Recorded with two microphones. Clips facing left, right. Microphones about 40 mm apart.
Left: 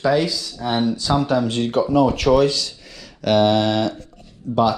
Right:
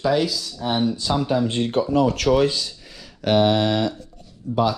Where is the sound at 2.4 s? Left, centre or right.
Right.